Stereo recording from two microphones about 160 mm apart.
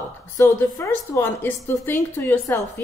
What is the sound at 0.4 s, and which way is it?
A woman's voice, 15° left (ahead or behind).